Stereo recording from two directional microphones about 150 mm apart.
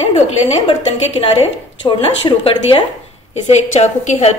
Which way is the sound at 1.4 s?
40° left (ahead or behind).